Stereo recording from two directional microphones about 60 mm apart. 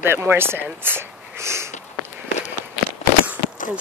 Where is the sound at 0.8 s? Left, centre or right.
Right.